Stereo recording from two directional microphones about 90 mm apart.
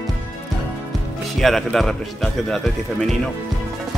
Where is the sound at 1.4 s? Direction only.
5° left (ahead or behind).